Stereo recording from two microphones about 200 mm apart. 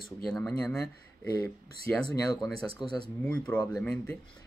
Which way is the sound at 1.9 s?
10° left (ahead or behind).